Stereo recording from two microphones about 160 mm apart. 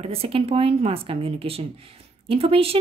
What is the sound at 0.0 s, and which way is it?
Speech, 35° right (ahead or behind).